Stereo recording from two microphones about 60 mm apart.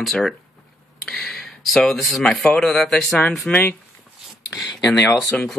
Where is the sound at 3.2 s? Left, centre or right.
Left.